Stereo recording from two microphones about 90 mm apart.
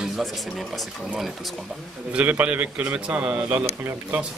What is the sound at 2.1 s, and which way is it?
A man's voice, 15° right (ahead or behind).